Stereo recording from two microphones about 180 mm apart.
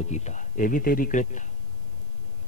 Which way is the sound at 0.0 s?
40° left (ahead or behind).